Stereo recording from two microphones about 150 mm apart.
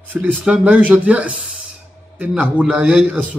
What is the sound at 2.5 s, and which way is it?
Speech, 10° right (ahead or behind).